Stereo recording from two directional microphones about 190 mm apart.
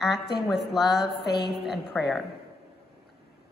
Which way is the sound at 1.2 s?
60° left (ahead or behind).